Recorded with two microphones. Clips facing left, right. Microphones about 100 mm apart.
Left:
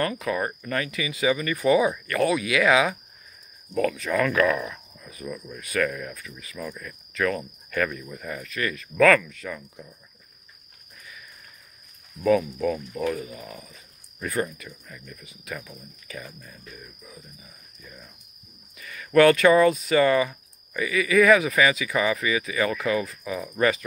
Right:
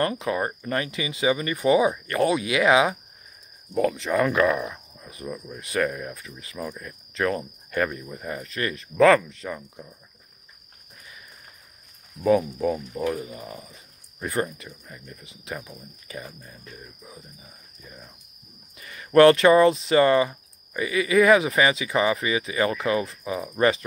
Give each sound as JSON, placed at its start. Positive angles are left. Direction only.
{"t": 0.0, "sound": "speech", "side_deg": -25}
{"t": 12.2, "sound": "speech", "side_deg": -20}